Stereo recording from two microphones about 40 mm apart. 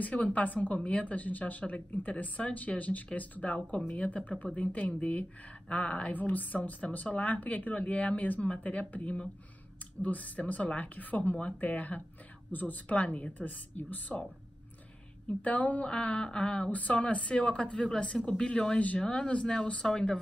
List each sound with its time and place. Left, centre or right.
0.0 s a woman's voice: left
12.8 s speech: left
15.2 s speech: left
16.7 s speech: left